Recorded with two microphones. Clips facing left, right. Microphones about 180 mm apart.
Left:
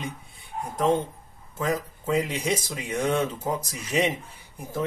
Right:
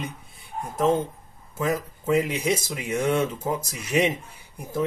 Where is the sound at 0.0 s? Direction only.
Centre (ahead or behind).